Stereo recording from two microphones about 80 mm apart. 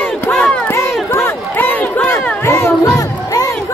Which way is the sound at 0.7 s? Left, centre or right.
Left.